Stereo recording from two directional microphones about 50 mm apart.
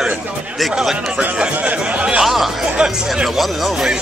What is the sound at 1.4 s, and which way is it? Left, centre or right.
Chatter, right.